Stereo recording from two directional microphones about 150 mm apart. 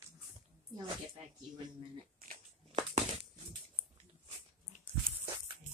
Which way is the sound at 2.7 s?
40° right (ahead or behind).